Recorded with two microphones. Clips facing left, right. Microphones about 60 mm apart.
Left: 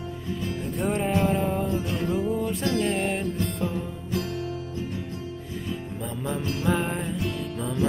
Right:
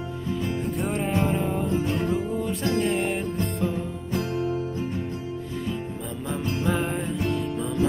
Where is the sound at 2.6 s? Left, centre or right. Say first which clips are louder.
Right 3 dB; right.